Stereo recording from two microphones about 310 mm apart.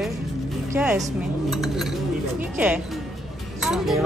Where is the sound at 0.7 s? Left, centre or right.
Centre.